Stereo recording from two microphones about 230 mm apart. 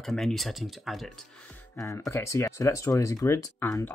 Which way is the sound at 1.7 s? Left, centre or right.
Centre.